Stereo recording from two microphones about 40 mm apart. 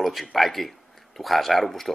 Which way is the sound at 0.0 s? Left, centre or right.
Centre.